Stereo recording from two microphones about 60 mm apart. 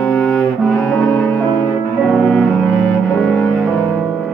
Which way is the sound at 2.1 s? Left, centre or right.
Centre.